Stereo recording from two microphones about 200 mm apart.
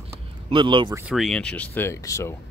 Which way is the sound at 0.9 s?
5° right (ahead or behind).